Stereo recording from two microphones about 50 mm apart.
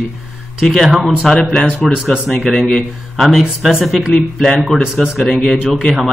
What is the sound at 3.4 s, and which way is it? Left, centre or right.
Speech, centre.